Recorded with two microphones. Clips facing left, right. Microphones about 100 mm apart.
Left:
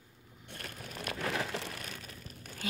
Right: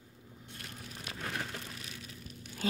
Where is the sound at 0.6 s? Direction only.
50° left (ahead or behind).